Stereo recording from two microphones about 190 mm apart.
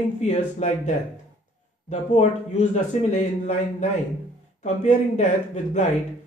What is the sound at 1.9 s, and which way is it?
Speech, 35° left (ahead or behind).